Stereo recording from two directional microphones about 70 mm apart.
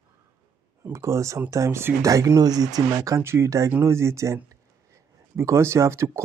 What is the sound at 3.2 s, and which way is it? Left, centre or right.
Speech, right.